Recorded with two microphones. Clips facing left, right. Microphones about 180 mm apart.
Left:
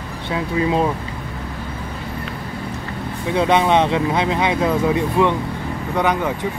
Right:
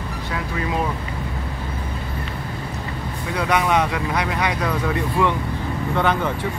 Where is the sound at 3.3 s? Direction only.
25° left (ahead or behind).